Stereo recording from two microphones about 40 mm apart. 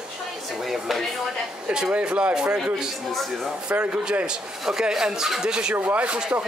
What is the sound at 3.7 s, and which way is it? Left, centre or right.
Speech, right.